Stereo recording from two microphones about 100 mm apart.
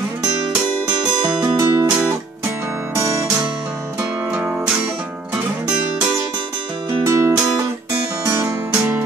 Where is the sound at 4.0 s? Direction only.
10° right (ahead or behind).